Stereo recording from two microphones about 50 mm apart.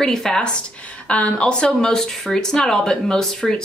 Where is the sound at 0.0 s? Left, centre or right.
Centre.